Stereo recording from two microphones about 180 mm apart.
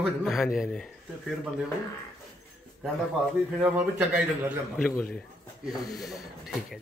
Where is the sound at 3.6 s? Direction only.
10° right (ahead or behind).